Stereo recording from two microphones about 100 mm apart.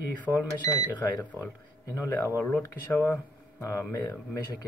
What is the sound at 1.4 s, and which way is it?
Speech, 30° left (ahead or behind).